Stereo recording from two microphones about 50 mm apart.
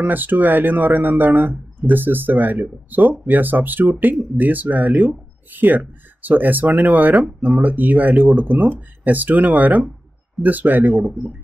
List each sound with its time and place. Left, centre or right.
0.0 s speech: right